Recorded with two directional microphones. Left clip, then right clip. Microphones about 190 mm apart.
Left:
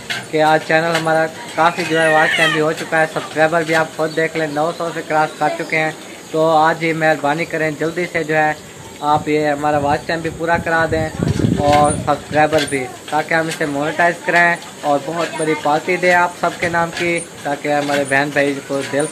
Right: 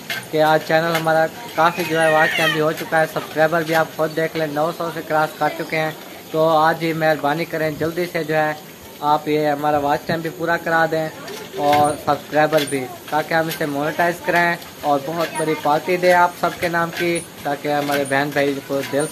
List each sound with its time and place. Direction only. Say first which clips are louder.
0.3 s speech: left 2 dB; 5° right (ahead or behind)